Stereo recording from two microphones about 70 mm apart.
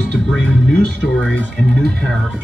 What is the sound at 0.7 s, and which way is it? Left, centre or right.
Speech, left.